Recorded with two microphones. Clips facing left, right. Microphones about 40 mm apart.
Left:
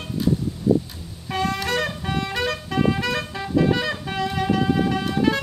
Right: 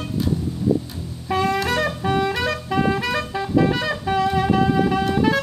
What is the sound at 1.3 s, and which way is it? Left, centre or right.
Music, centre.